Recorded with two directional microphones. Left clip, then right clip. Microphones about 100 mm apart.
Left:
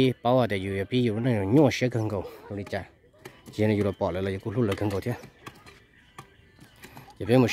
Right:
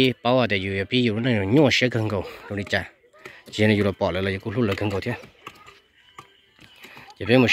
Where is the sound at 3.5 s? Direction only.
5° left (ahead or behind); by 5.2 s 25° left (ahead or behind).